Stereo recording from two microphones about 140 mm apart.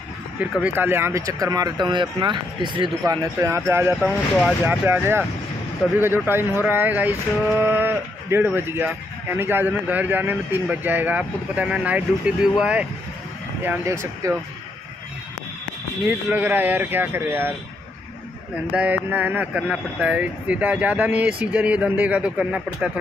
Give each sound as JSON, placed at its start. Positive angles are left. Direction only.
{"t": 0.4, "sound": "speech", "side_deg": -10}
{"t": 3.3, "sound": "speech", "side_deg": -20}
{"t": 4.0, "sound": "speech", "side_deg": 0}
{"t": 4.6, "sound": "speech", "side_deg": -15}
{"t": 13.7, "sound": "speech", "side_deg": -20}
{"t": 16.1, "sound": "speech", "side_deg": -10}
{"t": 18.7, "sound": "speech", "side_deg": -10}